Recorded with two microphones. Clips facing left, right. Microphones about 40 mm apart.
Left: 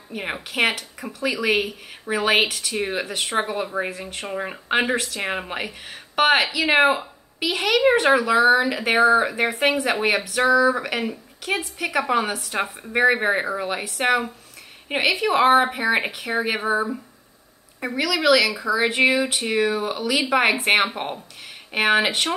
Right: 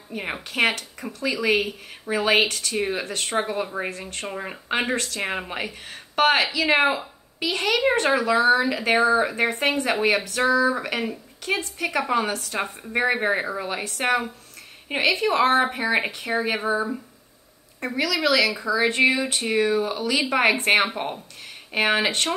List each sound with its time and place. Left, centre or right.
0.1 s speech: centre
9.3 s speech: centre
17.7 s speech: centre